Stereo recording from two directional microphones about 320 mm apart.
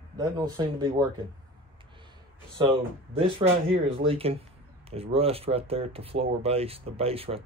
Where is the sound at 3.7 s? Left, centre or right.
Centre.